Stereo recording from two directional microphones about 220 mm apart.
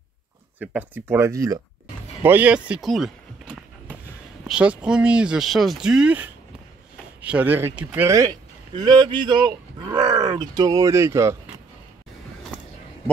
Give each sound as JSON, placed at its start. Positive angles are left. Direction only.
{"t": 0.6, "sound": "speech", "side_deg": -10}
{"t": 2.2, "sound": "a sound", "side_deg": -5}
{"t": 4.5, "sound": "speech", "side_deg": -5}